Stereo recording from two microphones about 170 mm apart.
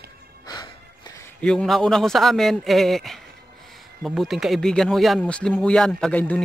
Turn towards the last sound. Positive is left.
turn(degrees=10)  # may be behind; listen again after turning